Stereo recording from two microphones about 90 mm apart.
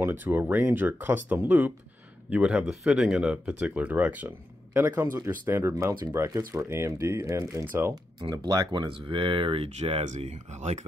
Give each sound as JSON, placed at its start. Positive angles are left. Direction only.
{"t": 0.0, "sound": "speech", "side_deg": -20}
{"t": 4.7, "sound": "speech", "side_deg": -30}
{"t": 5.6, "sound": "speech", "side_deg": -30}
{"t": 8.2, "sound": "speech", "side_deg": -50}
{"t": 8.8, "sound": "speech", "side_deg": -70}